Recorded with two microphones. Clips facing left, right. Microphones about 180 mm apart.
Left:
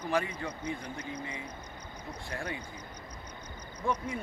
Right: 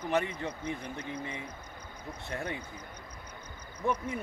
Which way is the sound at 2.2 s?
25° right (ahead or behind).